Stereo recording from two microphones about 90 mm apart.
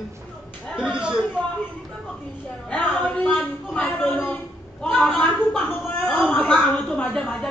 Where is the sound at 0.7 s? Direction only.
10° right (ahead or behind).